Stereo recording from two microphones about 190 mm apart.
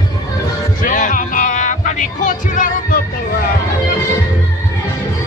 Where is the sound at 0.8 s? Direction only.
45° left (ahead or behind).